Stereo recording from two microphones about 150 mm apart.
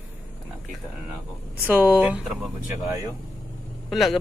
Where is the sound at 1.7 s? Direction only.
10° right (ahead or behind).